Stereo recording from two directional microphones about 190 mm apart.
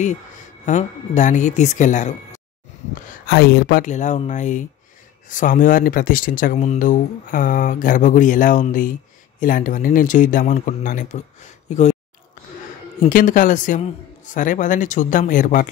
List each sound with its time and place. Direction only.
0.7 s speech: 40° left (ahead or behind)
3.3 s speech: 60° left (ahead or behind); by 11.2 s 40° left (ahead or behind)
11.7 s a sound: 40° left (ahead or behind)
13.1 s speech: 45° left (ahead or behind)